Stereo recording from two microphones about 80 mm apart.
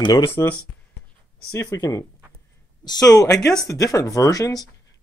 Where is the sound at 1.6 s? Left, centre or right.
Left.